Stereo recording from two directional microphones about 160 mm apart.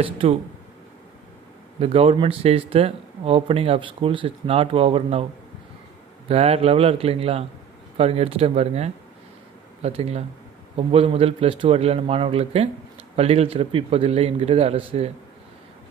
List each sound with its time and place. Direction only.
0.0 s speech: 35° right (ahead or behind)
1.8 s speech: 40° right (ahead or behind)
6.2 s speech: 40° right (ahead or behind)